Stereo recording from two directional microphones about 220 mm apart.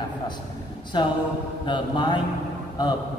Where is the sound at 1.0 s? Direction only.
20° left (ahead or behind).